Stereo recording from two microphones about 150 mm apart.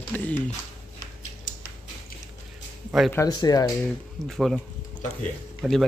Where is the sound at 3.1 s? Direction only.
25° left (ahead or behind).